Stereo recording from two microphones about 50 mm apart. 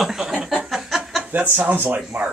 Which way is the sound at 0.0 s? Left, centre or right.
Centre.